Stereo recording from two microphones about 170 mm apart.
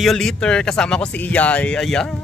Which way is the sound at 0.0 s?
Centre (ahead or behind).